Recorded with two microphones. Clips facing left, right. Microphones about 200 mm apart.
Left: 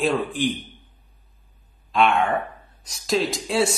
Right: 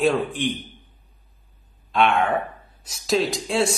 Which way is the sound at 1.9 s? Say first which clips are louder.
Even; centre (ahead or behind).